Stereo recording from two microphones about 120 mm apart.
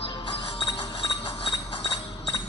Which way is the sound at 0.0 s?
45° left (ahead or behind).